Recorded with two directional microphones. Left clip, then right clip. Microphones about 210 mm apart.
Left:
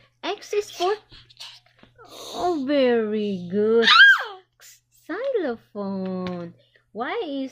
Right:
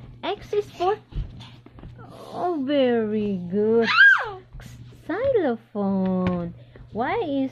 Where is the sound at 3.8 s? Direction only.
10° left (ahead or behind).